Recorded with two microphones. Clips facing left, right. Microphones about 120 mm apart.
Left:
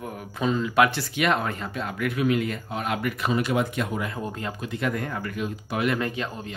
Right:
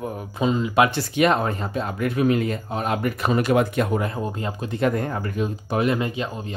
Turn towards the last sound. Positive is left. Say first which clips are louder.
# right 3 dB
turn(degrees=-20)  # may be behind; listen again after turning